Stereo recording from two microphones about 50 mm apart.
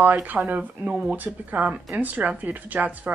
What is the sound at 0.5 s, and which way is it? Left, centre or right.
Speech, right.